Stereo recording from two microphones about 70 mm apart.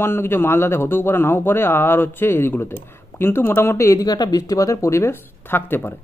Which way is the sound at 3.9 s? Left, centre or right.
Left.